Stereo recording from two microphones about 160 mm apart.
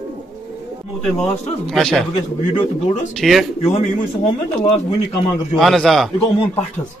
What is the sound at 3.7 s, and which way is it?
Speech, 40° left (ahead or behind).